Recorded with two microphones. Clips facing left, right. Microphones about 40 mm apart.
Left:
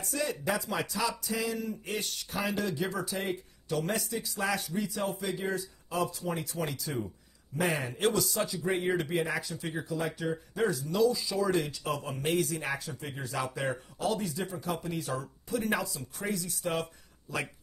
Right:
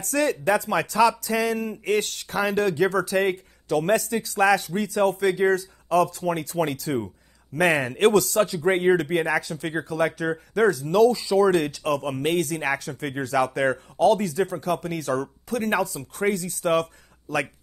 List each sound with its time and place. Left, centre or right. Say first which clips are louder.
0.0 s a man's voice: right 9 dB; right